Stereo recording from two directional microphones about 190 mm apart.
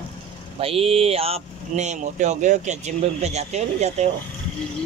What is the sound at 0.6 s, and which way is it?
Speech, 30° right (ahead or behind).